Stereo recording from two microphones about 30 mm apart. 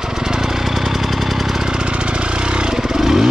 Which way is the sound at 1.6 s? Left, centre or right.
Right.